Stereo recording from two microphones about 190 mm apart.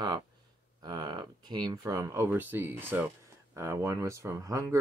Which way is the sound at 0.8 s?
20° right (ahead or behind).